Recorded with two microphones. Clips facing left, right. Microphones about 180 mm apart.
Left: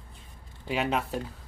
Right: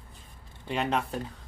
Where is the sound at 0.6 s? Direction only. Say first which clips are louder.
Even; 5° left (ahead or behind).